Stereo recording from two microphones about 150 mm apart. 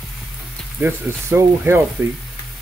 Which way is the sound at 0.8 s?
15° right (ahead or behind).